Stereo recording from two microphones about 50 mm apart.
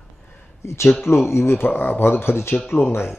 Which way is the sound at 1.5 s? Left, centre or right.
Left.